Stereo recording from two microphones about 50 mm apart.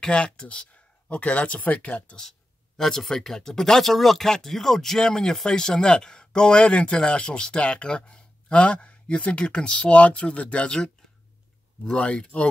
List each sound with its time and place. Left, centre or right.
0.0 s speech: centre
2.8 s speech: centre; by 10.7 s left
11.8 s speech: centre